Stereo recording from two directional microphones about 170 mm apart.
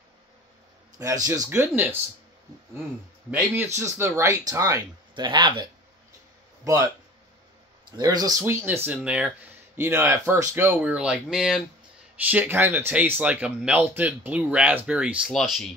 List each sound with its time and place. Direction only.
0.9 s speech: 20° right (ahead or behind)
3.3 s speech: 15° right (ahead or behind)
8.0 s speech: 20° right (ahead or behind); by 15.6 s centre (ahead or behind)